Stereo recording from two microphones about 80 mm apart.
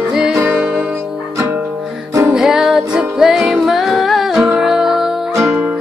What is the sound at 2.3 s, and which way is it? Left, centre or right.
Music, centre.